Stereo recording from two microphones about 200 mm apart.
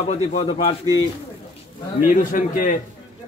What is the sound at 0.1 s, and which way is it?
Speech, 35° left (ahead or behind).